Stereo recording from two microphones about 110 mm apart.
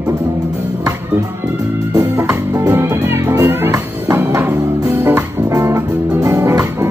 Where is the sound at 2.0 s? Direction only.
25° right (ahead or behind).